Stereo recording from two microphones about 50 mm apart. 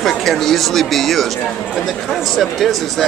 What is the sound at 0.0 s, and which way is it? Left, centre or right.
Speech, centre.